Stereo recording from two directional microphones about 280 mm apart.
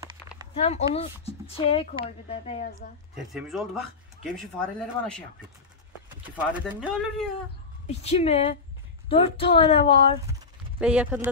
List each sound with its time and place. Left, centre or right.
0.6 s speech: left
3.3 s speech: centre
6.3 s speech: centre
7.8 s speech: left
10.8 s speech: centre